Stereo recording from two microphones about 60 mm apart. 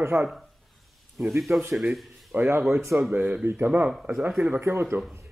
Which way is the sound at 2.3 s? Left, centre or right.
Right.